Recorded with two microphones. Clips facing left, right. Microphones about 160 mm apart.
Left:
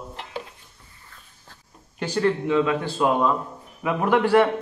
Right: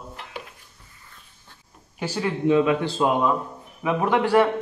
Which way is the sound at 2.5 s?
20° right (ahead or behind).